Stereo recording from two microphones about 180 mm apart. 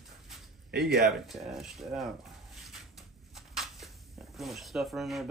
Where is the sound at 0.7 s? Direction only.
60° right (ahead or behind).